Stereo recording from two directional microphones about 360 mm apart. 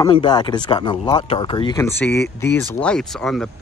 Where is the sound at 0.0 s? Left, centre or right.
Centre.